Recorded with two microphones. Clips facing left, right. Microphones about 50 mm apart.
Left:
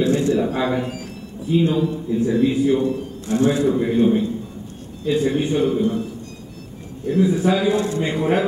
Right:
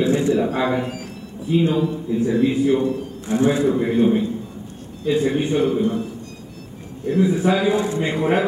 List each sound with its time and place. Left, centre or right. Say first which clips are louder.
0.0 s a sound: even; centre
1.5 s a man's voice: even; centre
7.1 s a man's voice: even; centre